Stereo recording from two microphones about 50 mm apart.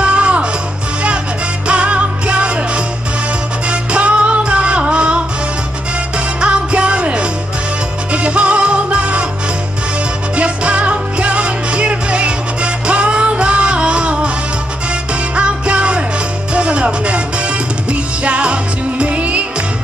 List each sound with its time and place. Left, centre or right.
0.0 s music: right
1.7 s music: right
10.3 s music: right
15.3 s music: right